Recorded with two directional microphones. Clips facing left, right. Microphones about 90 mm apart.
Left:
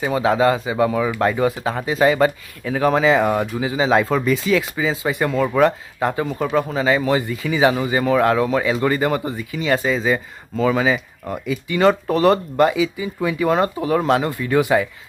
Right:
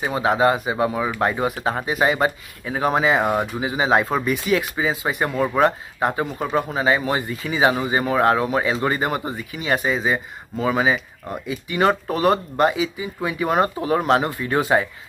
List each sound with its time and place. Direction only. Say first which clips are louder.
0.0 s speech: left 2 dB; 20° right (ahead or behind)